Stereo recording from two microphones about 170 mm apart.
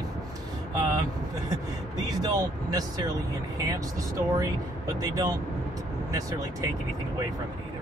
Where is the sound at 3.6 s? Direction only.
20° right (ahead or behind).